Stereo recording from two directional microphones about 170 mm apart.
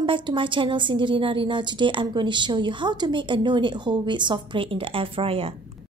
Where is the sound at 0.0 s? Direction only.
30° right (ahead or behind).